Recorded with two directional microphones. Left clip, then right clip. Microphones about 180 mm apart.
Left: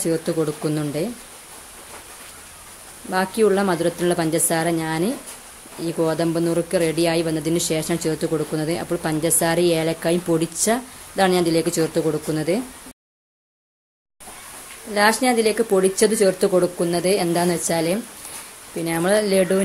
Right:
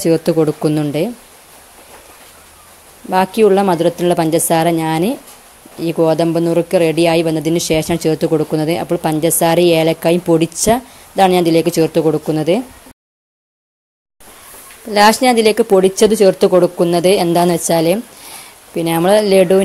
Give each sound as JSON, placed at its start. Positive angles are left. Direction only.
{"t": 0.0, "sound": "speech", "side_deg": -35}
{"t": 3.1, "sound": "speech", "side_deg": -30}
{"t": 15.0, "sound": "speech", "side_deg": -40}